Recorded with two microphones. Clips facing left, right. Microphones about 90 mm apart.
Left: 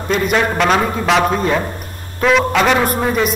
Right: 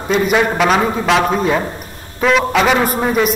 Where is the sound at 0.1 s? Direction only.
Centre (ahead or behind).